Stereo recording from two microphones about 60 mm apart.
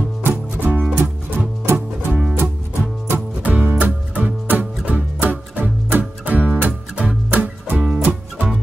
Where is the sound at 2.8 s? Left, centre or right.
Right.